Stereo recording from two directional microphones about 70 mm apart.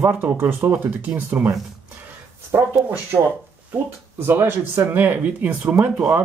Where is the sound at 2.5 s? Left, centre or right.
Right.